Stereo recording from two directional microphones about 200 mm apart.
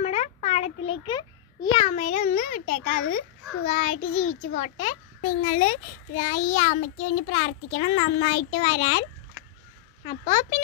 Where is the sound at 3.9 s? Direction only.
80° left.